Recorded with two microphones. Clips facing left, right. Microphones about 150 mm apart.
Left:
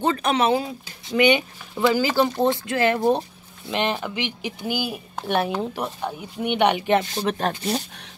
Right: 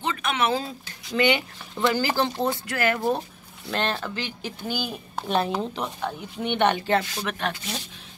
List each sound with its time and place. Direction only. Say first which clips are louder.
0.0 s speech: left 5 dB; 40° left (ahead or behind)
0.5 s speech: left 5 dB; 15° left (ahead or behind)
5.1 s speech: left 1 dB; centre (ahead or behind); by 7.8 s 40° left (ahead or behind)